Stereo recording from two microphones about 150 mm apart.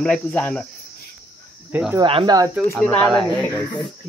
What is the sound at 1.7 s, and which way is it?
Speech, 10° right (ahead or behind).